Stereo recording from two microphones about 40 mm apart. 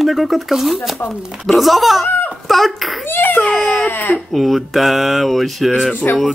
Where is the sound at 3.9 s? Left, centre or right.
Left.